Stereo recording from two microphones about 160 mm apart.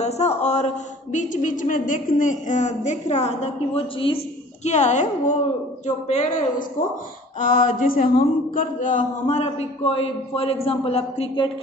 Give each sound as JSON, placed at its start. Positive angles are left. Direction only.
{"t": 0.0, "sound": "a woman's voice", "side_deg": 45}
{"t": 4.6, "sound": "a woman's voice", "side_deg": 45}
{"t": 8.5, "sound": "a woman's voice", "side_deg": 55}
{"t": 9.3, "sound": "a man's voice", "side_deg": 40}